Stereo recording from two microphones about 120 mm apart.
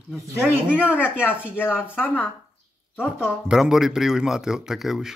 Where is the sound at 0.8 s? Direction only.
15° left (ahead or behind).